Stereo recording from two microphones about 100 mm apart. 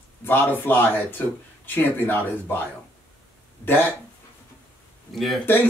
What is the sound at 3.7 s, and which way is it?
Speech, 20° left (ahead or behind).